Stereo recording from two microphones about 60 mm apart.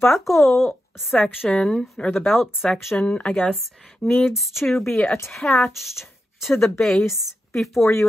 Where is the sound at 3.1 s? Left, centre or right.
Centre.